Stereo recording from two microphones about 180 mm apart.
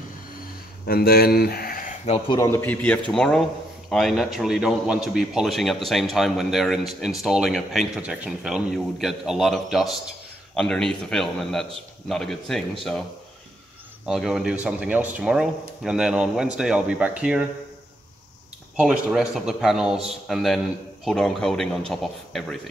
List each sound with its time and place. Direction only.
0.8 s speech: 55° left (ahead or behind)
2.0 s a man's voice: 30° left (ahead or behind); by 13.0 s centre (ahead or behind)
14.0 s a man's voice: centre (ahead or behind)
18.8 s a man's voice: 5° right (ahead or behind)